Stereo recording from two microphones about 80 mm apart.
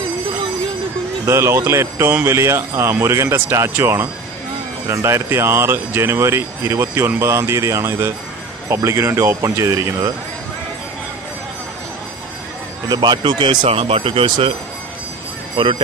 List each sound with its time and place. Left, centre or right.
1.2 s speech: right
12.8 s speech: right
15.5 s speech: right